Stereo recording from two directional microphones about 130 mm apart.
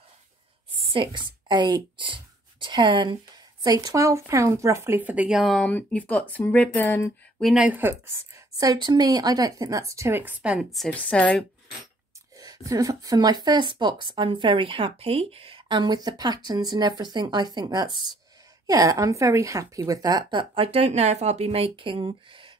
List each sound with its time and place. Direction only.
0.9 s a woman's voice: 35° right (ahead or behind); by 5.7 s centre (ahead or behind)
5.7 s speech: 10° left (ahead or behind)
7.4 s speech: 5° right (ahead or behind)
8.5 s a woman's voice: 30° right (ahead or behind); by 10.9 s centre (ahead or behind)
10.9 s speech: 10° left (ahead or behind)
12.4 s speech: 30° right (ahead or behind)